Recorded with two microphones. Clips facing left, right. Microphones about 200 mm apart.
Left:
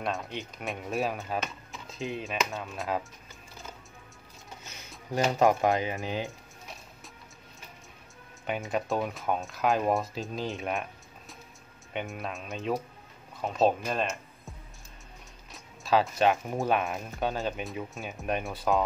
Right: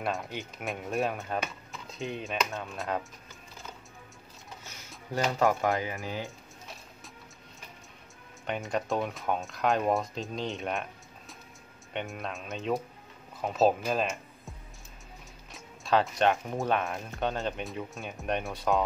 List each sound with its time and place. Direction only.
0.0 s speech: centre (ahead or behind)
4.6 s a sound: 15° left (ahead or behind)
5.4 s speech: 15° left (ahead or behind)
8.5 s speech: centre (ahead or behind)
15.5 s speech: centre (ahead or behind)